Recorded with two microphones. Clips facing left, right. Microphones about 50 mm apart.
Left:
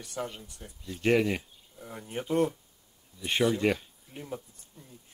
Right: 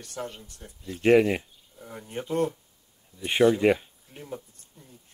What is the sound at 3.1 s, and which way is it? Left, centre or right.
Speech, centre.